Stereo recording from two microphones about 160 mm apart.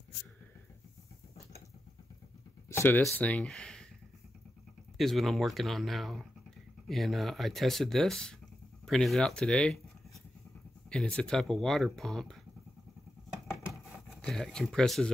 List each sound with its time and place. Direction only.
2.7 s speech: 15° left (ahead or behind)
3.0 s speech: 5° left (ahead or behind)
4.9 s speech: centre (ahead or behind)
10.9 s speech: 5° left (ahead or behind)
14.2 s speech: 5° left (ahead or behind)